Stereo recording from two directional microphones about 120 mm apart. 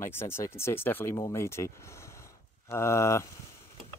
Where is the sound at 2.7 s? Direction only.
25° left (ahead or behind).